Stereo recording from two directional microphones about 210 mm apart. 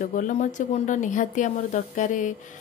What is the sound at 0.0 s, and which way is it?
Speech, 40° left (ahead or behind).